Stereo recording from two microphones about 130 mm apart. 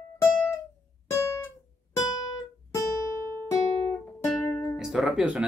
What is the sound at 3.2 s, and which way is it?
Music, 30° right (ahead or behind).